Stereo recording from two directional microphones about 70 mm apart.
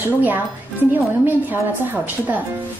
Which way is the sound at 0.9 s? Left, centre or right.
Right.